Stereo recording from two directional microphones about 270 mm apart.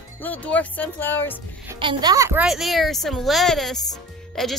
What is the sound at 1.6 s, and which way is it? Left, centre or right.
A woman's voice, centre.